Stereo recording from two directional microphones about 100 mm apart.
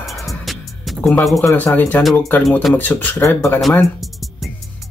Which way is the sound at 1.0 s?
5° left (ahead or behind).